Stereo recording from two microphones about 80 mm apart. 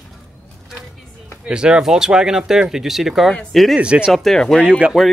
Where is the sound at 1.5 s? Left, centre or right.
Centre.